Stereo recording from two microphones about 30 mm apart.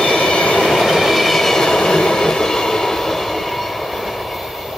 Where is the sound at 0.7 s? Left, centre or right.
Centre.